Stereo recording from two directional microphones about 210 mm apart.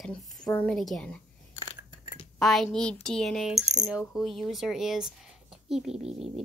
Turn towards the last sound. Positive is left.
turn(degrees=-5)  # may be behind; listen again after turning